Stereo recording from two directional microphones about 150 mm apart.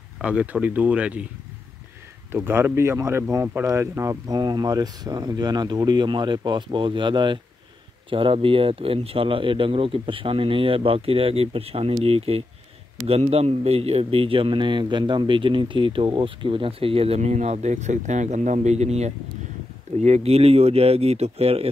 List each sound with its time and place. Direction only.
0.2 s speech: 5° right (ahead or behind)
2.3 s a man's voice: 15° right (ahead or behind); by 21.6 s 40° right (ahead or behind)